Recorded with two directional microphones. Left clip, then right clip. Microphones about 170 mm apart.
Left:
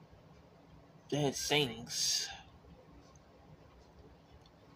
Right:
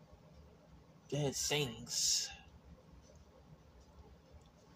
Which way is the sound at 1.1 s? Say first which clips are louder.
Left 4 dB; 20° right (ahead or behind).